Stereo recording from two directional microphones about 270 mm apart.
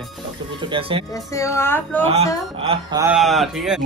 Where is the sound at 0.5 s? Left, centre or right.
Centre.